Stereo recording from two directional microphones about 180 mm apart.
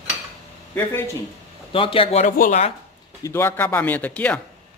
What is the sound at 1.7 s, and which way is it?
A man's voice, 30° left (ahead or behind).